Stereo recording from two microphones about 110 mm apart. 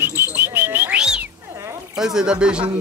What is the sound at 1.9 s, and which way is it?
Speech, 5° right (ahead or behind).